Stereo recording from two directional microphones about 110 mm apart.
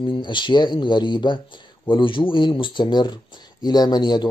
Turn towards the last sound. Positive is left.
turn(degrees=40)  # may be behind; listen again after turning